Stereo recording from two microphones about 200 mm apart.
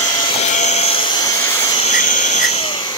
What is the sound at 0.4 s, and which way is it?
Aircraft, 35° left (ahead or behind).